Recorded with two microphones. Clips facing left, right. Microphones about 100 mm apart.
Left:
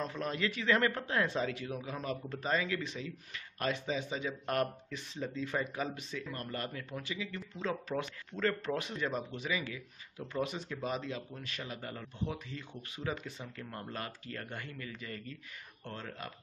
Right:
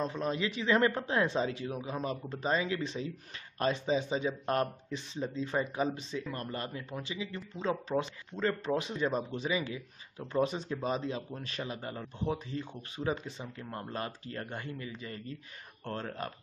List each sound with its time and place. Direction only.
0.0 s speech: 20° right (ahead or behind)
15.8 s speech: 45° right (ahead or behind)